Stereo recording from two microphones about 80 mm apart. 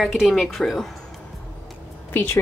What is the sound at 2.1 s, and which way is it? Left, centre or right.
Speech, left.